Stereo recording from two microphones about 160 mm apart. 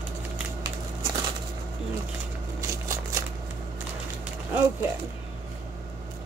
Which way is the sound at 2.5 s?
20° right (ahead or behind).